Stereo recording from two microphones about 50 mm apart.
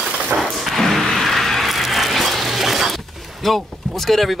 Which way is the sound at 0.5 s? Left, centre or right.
Centre.